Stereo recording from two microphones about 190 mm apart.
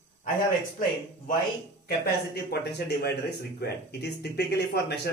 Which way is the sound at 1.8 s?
55° left (ahead or behind).